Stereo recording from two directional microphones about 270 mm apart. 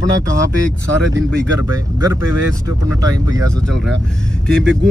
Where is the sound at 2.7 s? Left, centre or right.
Centre.